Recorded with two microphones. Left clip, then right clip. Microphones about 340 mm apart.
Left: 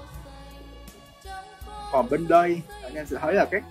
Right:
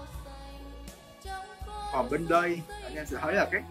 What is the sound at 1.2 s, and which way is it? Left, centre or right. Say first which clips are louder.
Speech: even; centre.